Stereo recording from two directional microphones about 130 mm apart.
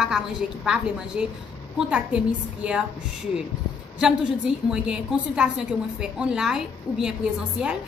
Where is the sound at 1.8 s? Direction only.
10° right (ahead or behind).